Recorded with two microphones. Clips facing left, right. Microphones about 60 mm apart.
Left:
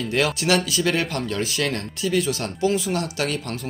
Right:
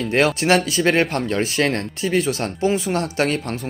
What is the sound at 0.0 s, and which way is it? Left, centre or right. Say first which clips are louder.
Speech: right 4 dB; right.